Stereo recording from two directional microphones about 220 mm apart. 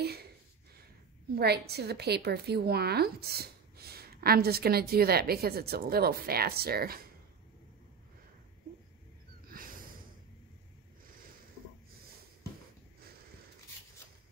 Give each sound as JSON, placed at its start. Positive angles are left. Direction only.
{"t": 1.3, "sound": "a woman's voice", "side_deg": -45}
{"t": 9.5, "sound": "snort", "side_deg": -40}